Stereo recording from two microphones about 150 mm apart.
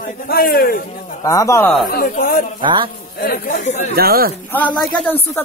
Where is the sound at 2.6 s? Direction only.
30° right (ahead or behind).